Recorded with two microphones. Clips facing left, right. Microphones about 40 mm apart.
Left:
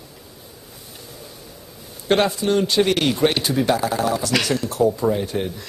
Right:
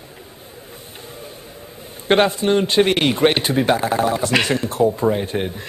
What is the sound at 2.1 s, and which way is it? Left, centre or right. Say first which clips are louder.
A woman's voice: right 3 dB; right.